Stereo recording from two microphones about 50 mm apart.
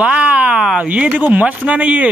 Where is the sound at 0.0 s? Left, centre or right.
Right.